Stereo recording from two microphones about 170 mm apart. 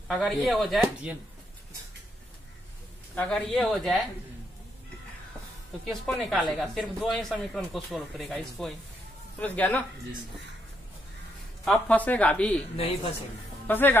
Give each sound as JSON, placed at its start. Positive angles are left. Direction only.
{"t": 0.1, "sound": "speech", "side_deg": 0}
{"t": 3.2, "sound": "speech", "side_deg": 5}
{"t": 5.9, "sound": "speech", "side_deg": 0}
{"t": 11.6, "sound": "speech", "side_deg": 5}
{"t": 12.7, "sound": "speech", "side_deg": 35}
{"t": 13.7, "sound": "speech", "side_deg": 10}